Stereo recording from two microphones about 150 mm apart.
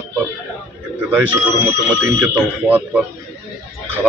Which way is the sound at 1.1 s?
10° right (ahead or behind).